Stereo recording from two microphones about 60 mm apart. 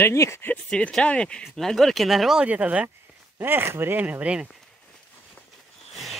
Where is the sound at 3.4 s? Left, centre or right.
Right.